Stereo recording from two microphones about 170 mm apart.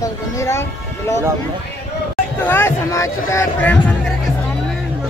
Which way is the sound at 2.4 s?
15° left (ahead or behind).